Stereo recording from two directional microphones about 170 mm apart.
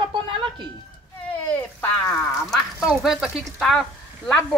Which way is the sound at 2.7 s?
5° right (ahead or behind).